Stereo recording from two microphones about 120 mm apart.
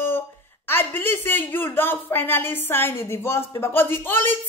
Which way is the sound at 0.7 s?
15° left (ahead or behind).